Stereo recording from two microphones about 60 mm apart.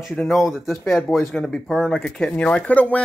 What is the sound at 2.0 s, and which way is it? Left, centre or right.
Speech, centre.